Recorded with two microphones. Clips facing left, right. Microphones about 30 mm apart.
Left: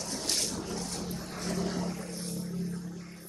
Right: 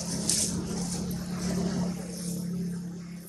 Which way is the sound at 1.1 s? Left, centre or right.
Centre.